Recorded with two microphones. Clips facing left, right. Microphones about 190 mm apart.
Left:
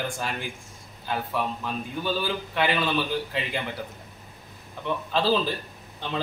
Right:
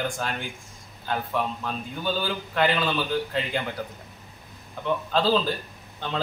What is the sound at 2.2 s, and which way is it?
Speech, 5° left (ahead or behind).